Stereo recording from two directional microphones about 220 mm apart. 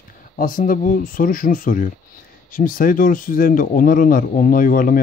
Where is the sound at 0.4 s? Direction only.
40° left (ahead or behind).